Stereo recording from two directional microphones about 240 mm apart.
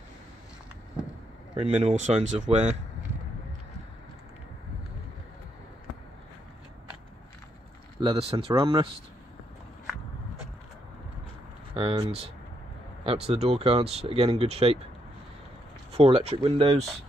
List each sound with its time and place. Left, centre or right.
1.6 s speech: right
8.0 s speech: right
11.7 s speech: centre
16.0 s speech: right